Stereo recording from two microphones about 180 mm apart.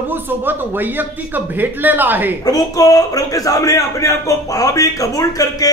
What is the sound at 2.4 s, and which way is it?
A man's voice, 20° left (ahead or behind).